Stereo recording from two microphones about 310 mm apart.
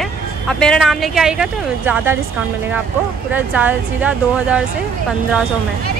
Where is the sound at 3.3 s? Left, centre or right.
Centre.